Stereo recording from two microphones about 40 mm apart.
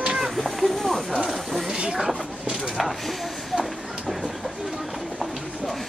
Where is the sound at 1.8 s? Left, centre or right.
Centre.